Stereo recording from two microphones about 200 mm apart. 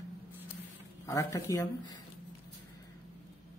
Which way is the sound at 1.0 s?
15° left (ahead or behind).